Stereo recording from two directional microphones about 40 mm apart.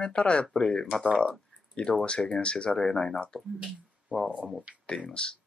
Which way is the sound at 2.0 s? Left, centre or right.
Left.